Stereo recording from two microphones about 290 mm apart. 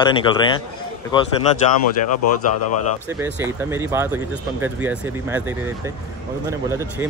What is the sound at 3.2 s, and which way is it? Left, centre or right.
Speech, centre.